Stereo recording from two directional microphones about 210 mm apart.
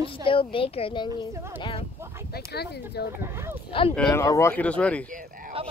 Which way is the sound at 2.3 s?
50° left (ahead or behind).